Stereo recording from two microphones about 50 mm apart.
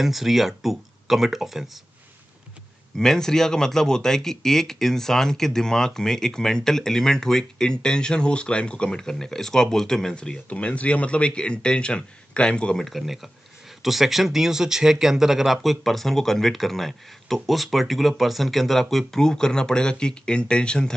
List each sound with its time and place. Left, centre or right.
0.0 s speech: centre
3.0 s speech: centre
12.7 s speech: centre